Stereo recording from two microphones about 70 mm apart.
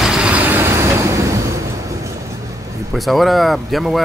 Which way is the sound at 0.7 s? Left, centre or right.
Right.